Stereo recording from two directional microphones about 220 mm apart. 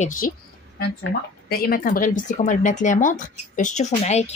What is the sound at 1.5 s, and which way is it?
Speech, 40° left (ahead or behind).